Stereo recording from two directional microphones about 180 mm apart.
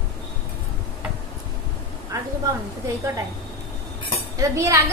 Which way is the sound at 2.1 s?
20° right (ahead or behind).